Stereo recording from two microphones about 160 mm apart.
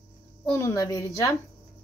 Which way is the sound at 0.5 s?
20° left (ahead or behind).